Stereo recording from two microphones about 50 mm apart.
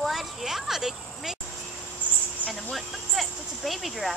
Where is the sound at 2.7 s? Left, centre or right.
Centre.